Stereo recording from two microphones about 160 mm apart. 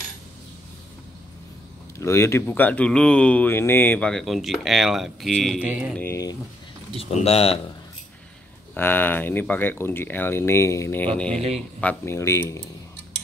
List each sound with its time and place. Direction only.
2.0 s speech: 15° left (ahead or behind); by 5.9 s 10° right (ahead or behind)
5.9 s speech: 15° left (ahead or behind)
7.0 s speech: 40° left (ahead or behind)
8.7 s speech: 15° left (ahead or behind)
11.3 s speech: 40° right (ahead or behind)
11.8 s speech: 10° left (ahead or behind)